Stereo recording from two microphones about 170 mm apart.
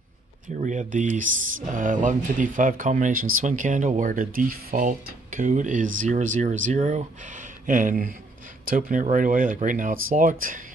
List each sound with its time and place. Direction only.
0.6 s speech: 45° right (ahead or behind)